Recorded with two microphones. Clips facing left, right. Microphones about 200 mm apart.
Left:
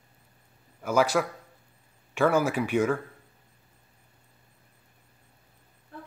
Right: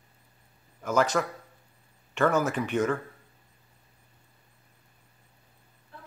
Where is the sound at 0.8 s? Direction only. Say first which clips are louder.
Left 1 dB; 10° left (ahead or behind).